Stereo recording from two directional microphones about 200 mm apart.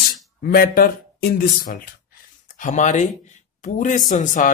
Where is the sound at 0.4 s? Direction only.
45° left (ahead or behind).